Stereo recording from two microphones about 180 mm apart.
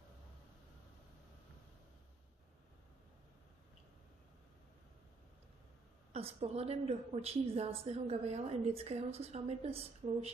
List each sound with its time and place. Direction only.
6.1 s a woman's voice: 35° right (ahead or behind)